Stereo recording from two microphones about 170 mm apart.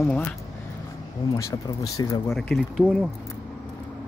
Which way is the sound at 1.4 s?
20° left (ahead or behind).